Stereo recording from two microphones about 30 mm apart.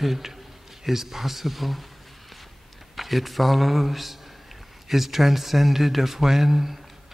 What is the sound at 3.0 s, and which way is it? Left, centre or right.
Speech, centre.